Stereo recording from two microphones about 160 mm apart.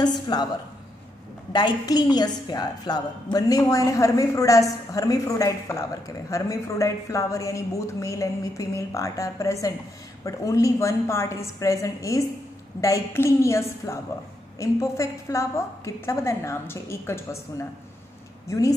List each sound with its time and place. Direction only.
0.3 s a woman's voice: 25° left (ahead or behind)
1.5 s a woman's voice: 25° left (ahead or behind)